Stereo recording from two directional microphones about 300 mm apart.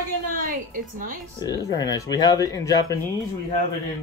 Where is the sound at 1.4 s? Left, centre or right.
Centre.